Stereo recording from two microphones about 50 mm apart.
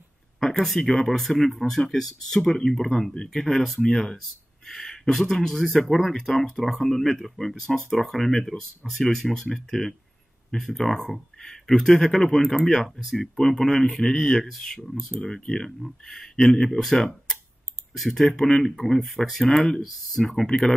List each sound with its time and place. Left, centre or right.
0.4 s a sound: centre
0.8 s speech: centre
19.4 s speech: centre
19.8 s speech: centre
20.4 s speech: centre